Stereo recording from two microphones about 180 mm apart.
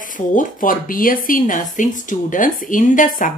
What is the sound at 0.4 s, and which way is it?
Speech, 50° left (ahead or behind).